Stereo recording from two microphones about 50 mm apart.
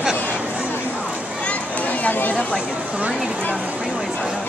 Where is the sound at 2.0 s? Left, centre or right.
Left.